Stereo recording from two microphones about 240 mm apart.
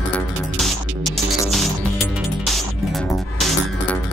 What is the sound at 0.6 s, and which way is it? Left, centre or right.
Music, centre.